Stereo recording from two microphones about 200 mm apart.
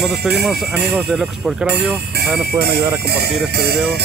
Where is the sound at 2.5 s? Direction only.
55° right (ahead or behind).